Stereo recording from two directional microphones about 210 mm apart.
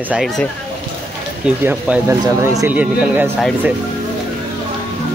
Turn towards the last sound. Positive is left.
turn(degrees=-5)  # may be behind; listen again after turning